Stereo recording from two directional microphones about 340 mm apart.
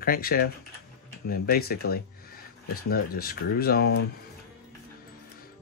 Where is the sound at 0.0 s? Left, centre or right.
Left.